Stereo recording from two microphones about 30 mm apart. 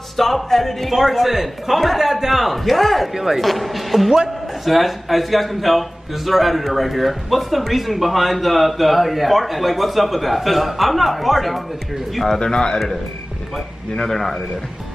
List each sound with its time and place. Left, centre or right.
0.2 s music: centre
0.9 s a man's voice: centre
12.4 s a man's voice: left
13.9 s music: centre